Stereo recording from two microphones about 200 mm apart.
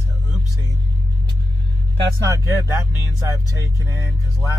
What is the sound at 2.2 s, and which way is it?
Speech, 15° right (ahead or behind).